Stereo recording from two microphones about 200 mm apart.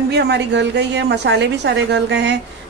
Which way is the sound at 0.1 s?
60° right (ahead or behind).